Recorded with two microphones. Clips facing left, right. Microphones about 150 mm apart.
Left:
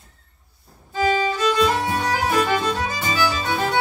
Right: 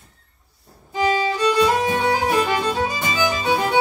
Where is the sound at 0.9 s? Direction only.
15° right (ahead or behind).